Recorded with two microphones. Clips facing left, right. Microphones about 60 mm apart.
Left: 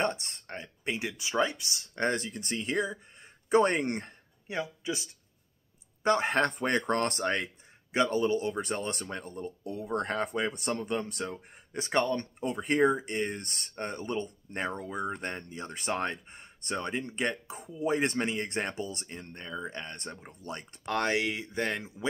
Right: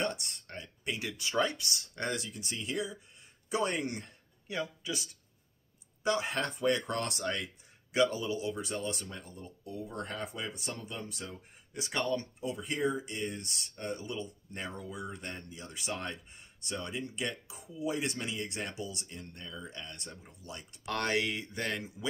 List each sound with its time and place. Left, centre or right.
0.0 s speech: left
2.0 s speech: left
4.5 s speech: left
6.0 s speech: left
12.2 s speech: left
20.8 s speech: left